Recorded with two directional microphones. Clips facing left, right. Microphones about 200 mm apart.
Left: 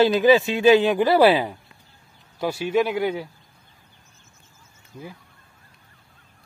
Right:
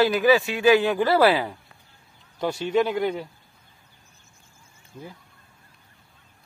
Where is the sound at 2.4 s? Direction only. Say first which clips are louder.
Left 1 dB; 5° left (ahead or behind).